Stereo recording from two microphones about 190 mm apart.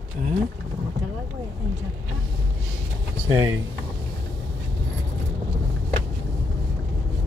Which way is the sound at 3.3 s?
20° right (ahead or behind).